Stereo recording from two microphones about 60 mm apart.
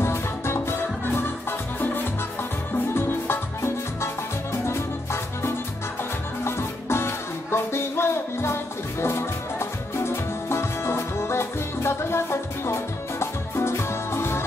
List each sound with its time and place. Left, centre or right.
0.0 s music: left
2.9 s music: left